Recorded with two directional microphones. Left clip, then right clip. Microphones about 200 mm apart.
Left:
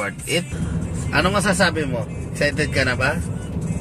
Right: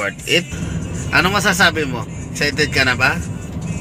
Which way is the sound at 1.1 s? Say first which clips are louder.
Right 4 dB; 20° right (ahead or behind).